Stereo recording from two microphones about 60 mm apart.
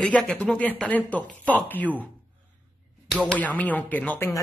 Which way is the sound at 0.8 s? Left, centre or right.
Left.